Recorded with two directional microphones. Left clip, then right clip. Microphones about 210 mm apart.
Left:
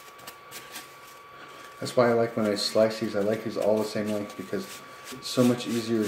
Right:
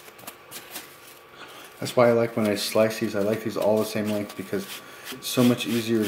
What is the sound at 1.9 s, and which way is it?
Speech, 30° right (ahead or behind).